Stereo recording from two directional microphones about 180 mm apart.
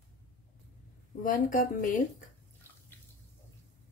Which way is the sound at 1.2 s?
45° left (ahead or behind).